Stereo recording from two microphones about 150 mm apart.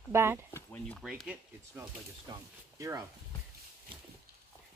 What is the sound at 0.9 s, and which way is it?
Speech, centre (ahead or behind).